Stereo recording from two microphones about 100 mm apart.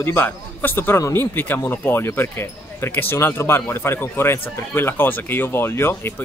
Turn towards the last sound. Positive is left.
turn(degrees=25)  # may be behind; listen again after turning